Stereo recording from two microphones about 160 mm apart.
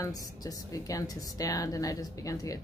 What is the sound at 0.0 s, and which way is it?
Speech, 20° left (ahead or behind).